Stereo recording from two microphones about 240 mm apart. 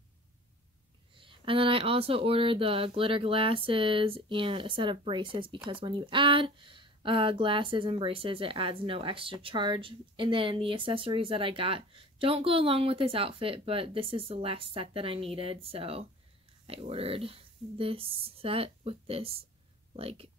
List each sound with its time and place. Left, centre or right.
1.1 s speech: right